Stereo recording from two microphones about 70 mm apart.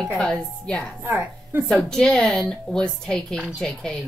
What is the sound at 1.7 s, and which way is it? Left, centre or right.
A woman's voice, centre.